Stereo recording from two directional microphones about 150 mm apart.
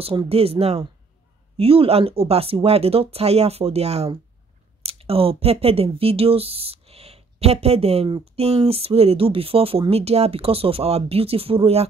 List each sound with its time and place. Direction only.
0.0 s speech: 35° right (ahead or behind)